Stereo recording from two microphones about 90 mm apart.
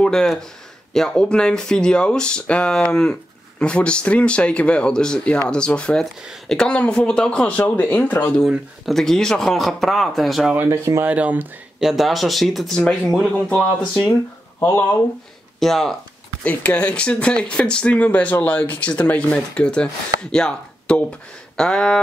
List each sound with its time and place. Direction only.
0.0 s speech: 5° left (ahead or behind)
8.5 s speech: centre (ahead or behind)
10.7 s speech: 35° right (ahead or behind)
11.1 s speech: 15° right (ahead or behind)
11.8 s speech: 5° right (ahead or behind)
14.6 s speech: 20° left (ahead or behind)
15.6 s speech: 5° left (ahead or behind)
16.4 s speech: 15° left (ahead or behind)